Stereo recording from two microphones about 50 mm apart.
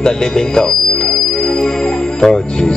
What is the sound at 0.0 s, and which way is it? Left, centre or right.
Speech, centre.